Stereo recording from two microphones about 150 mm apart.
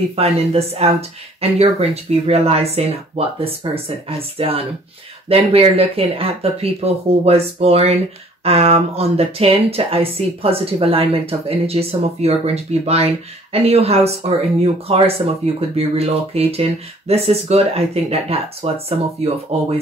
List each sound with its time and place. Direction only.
0.1 s speech: 40° right (ahead or behind)